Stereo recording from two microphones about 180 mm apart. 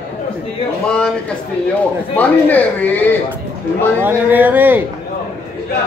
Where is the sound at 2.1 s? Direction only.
10° left (ahead or behind).